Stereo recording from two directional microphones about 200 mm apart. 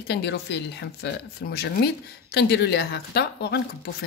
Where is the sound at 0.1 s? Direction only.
55° left (ahead or behind).